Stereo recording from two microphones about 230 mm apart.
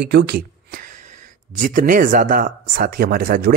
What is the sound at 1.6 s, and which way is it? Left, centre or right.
Speech, right.